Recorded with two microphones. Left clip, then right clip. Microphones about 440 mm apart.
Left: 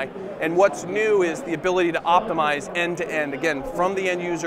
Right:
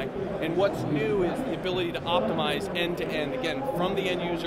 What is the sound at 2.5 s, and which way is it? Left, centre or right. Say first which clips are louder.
A man's voice: left 5 dB; left.